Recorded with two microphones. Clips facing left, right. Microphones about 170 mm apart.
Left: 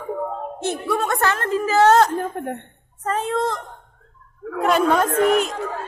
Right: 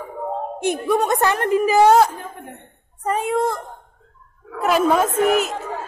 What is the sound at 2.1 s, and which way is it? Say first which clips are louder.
Speech: left 10 dB; 50° left (ahead or behind).